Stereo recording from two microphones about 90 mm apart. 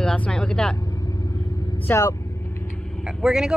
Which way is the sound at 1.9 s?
20° left (ahead or behind).